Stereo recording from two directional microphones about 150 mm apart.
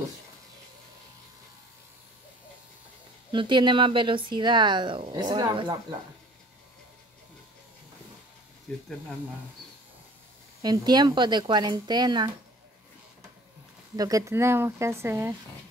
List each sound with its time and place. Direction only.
3.3 s speech: 30° right (ahead or behind)
10.6 s speech: 25° right (ahead or behind)
13.9 s speech: 25° right (ahead or behind)